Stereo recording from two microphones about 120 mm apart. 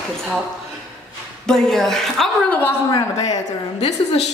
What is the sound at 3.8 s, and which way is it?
Speech, 60° left (ahead or behind).